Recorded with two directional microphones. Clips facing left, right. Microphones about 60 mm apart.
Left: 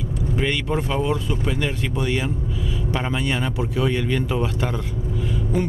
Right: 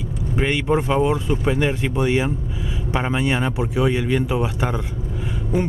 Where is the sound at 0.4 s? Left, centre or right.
Right.